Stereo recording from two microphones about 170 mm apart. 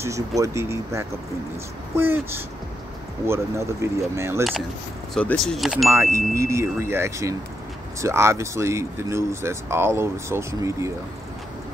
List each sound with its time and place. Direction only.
0.4 s speech: 15° right (ahead or behind)
5.1 s speech: 5° left (ahead or behind)
5.9 s speech: 15° right (ahead or behind)